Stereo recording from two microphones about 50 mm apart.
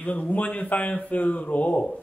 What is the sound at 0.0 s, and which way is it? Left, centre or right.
Speech, left.